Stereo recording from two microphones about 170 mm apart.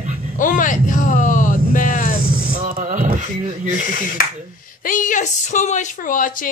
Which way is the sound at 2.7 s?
50° right (ahead or behind).